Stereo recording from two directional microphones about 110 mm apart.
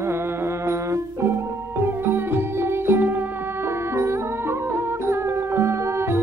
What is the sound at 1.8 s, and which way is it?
Music, 20° right (ahead or behind).